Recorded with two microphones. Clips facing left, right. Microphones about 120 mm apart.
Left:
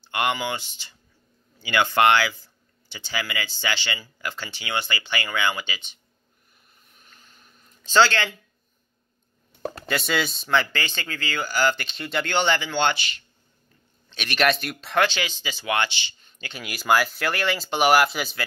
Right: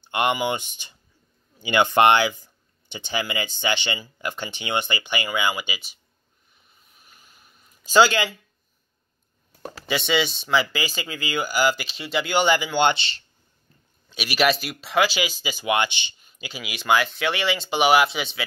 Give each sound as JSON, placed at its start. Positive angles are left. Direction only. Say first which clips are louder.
{"t": 0.0, "sound": "speech", "louder": "right 3 dB", "side_deg": -20}
{"t": 7.0, "sound": "a sound", "louder": "even", "side_deg": -10}
{"t": 9.8, "sound": "speech", "louder": "right 3 dB", "side_deg": 0}
{"t": 12.9, "sound": "speech", "louder": "right 1 dB", "side_deg": -30}
{"t": 14.0, "sound": "speech", "louder": "right 1 dB", "side_deg": -5}
{"t": 16.3, "sound": "speech", "louder": "right 1 dB", "side_deg": -5}